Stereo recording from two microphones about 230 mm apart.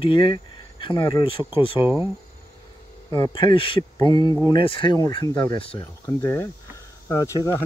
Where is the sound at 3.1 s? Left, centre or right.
Centre.